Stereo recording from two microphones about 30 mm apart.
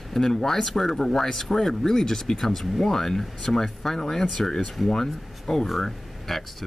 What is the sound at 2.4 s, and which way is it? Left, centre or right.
Speech, centre.